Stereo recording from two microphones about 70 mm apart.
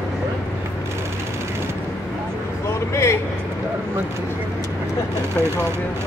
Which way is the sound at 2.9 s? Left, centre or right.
Left.